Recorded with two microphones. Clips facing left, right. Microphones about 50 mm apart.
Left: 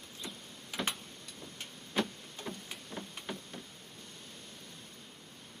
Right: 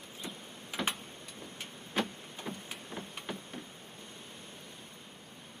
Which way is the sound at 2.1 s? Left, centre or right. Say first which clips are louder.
Right 1 dB; centre.